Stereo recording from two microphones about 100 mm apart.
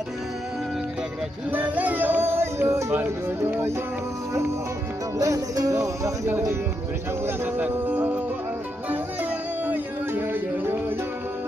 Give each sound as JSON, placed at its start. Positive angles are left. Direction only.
{"t": 1.5, "sound": "music", "side_deg": -15}
{"t": 5.2, "sound": "music", "side_deg": -35}
{"t": 7.2, "sound": "speech", "side_deg": -15}
{"t": 9.7, "sound": "music", "side_deg": -20}